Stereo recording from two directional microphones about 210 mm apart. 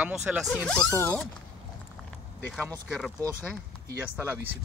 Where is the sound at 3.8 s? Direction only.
10° right (ahead or behind).